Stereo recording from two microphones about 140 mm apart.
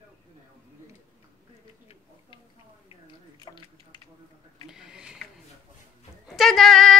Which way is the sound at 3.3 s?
30° left (ahead or behind).